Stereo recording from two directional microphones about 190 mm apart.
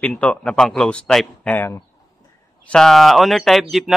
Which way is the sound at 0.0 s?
5° left (ahead or behind).